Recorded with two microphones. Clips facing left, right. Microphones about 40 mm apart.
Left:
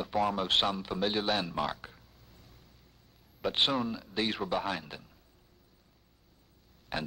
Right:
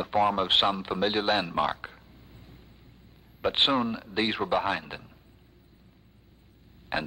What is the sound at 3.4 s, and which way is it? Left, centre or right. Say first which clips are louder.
A man's voice: right 5 dB; right.